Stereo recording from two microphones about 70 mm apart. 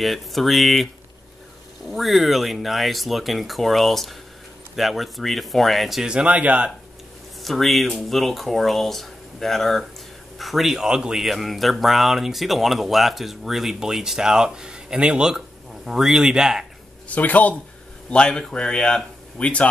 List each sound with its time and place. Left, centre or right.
0.0 s speech: centre
1.9 s speech: centre; by 6.7 s right
7.4 s speech: centre
17.1 s speech: left